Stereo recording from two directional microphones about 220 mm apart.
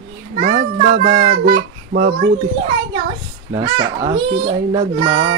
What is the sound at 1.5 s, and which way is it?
Speech, 55° right (ahead or behind).